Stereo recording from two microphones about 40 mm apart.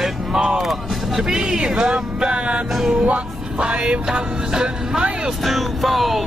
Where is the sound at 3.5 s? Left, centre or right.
Right.